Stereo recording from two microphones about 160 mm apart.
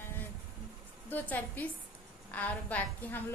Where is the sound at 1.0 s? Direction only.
10° left (ahead or behind).